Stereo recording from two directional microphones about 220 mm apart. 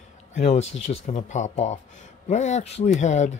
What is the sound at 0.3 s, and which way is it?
A man's voice, 30° left (ahead or behind).